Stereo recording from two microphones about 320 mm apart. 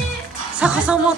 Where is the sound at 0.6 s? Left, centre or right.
Centre.